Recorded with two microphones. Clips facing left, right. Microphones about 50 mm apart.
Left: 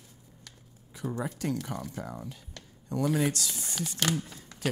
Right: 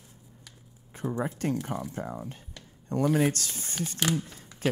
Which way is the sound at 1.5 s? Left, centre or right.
Centre.